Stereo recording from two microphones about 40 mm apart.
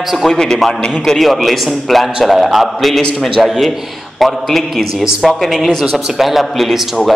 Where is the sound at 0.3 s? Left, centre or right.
Centre.